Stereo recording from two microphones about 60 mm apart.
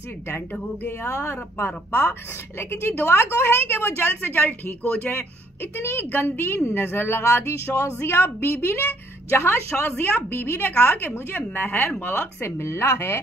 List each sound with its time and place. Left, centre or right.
2.6 s speech: left
5.8 s speech: left